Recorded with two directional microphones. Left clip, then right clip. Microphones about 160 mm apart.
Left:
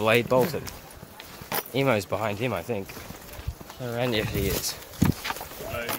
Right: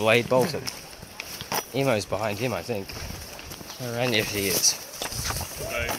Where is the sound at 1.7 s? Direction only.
25° left (ahead or behind).